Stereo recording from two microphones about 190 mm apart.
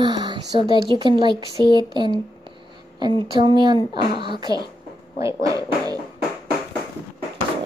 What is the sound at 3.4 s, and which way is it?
Speech, 25° right (ahead or behind).